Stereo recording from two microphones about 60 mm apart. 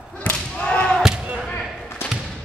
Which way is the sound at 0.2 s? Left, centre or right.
Left.